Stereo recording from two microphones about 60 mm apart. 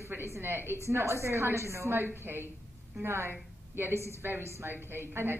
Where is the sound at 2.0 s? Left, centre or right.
Right.